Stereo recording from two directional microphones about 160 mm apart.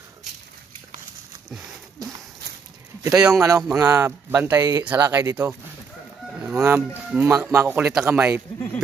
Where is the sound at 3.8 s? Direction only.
20° right (ahead or behind).